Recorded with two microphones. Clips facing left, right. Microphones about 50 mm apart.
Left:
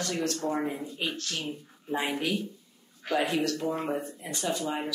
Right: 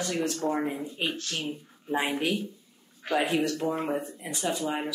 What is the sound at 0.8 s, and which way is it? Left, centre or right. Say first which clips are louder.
Speech: right 2 dB; right.